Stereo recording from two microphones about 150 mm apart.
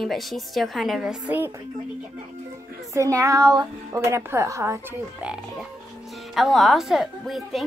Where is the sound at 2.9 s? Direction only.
20° right (ahead or behind).